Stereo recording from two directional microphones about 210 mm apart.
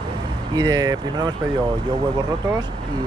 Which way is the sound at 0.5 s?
20° right (ahead or behind).